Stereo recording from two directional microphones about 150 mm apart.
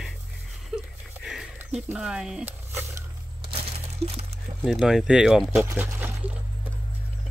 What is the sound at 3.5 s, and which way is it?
Crumpling, 40° right (ahead or behind).